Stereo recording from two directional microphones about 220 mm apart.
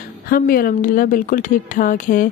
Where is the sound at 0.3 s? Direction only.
40° left (ahead or behind).